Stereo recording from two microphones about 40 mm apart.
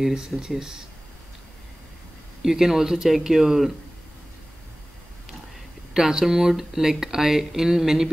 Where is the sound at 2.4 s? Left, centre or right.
Centre.